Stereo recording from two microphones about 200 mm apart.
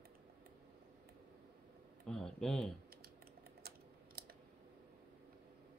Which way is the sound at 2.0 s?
Centre (ahead or behind).